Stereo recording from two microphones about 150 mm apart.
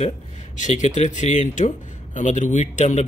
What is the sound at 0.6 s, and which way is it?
Speech, 50° left (ahead or behind).